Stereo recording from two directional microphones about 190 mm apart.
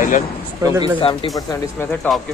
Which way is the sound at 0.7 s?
15° right (ahead or behind).